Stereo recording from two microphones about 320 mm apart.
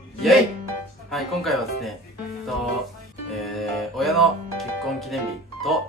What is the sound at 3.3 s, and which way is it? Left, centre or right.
Music, centre.